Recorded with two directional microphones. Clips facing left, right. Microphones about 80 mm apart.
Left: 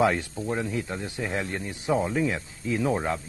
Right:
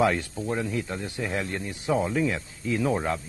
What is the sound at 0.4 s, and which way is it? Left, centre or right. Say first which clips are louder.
Speech: even; centre.